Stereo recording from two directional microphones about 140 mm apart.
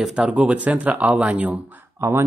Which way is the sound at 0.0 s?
5° right (ahead or behind).